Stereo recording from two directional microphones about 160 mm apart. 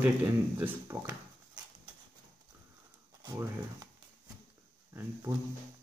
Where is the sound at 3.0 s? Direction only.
20° right (ahead or behind).